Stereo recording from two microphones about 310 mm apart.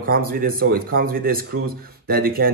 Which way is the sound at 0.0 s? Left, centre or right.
Right.